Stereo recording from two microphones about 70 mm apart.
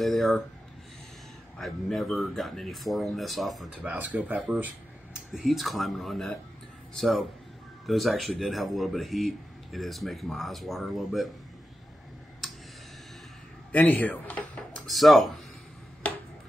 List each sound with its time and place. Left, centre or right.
0.0 s a man's voice: centre
1.6 s a man's voice: centre
4.0 s speech: right
5.1 s a man's voice: centre
12.4 s tick: centre
13.7 s speech: left
14.9 s a man's voice: centre